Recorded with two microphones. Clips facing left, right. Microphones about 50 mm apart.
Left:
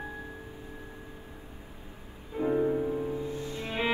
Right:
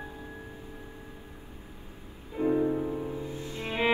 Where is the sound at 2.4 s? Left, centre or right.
Centre.